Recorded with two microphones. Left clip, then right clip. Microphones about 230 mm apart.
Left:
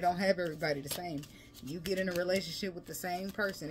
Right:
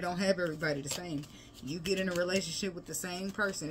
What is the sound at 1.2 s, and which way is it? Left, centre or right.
Speech, left.